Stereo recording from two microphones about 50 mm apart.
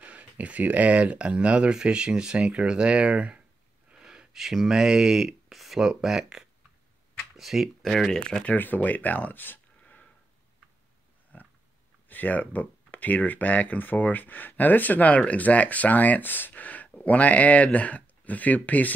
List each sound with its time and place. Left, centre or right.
0.0 s speech: right
4.0 s speech: centre
7.9 s speech: centre
8.5 s speech: left
9.8 s a sound: left
11.3 s pig: left
12.1 s speech: left